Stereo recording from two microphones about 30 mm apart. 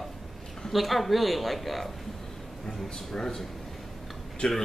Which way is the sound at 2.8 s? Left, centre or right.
Centre.